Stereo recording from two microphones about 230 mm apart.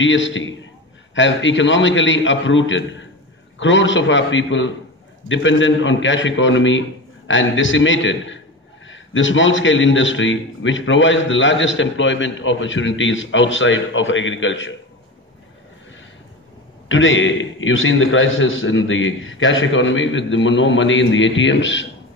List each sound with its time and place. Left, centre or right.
0.0 s a man's voice: left
16.9 s a man's voice: left